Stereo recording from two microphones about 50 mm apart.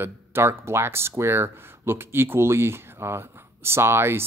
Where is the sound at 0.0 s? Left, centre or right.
Right.